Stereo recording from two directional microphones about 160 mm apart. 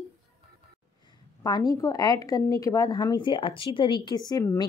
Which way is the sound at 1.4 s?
25° left (ahead or behind).